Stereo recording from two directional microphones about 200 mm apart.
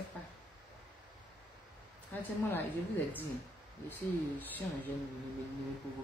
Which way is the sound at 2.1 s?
10° left (ahead or behind).